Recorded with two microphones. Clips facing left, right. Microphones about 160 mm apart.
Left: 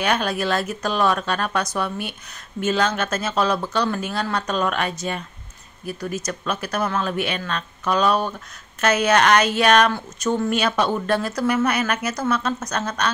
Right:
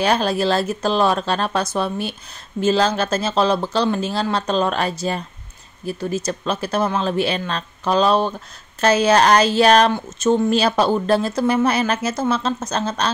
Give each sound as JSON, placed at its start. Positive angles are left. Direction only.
{"t": 0.0, "sound": "speech", "side_deg": -30}